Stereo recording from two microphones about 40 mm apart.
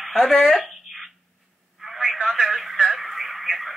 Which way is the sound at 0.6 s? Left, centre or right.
Centre.